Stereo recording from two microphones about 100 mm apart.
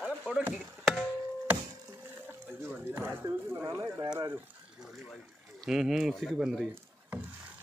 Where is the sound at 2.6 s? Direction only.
20° right (ahead or behind).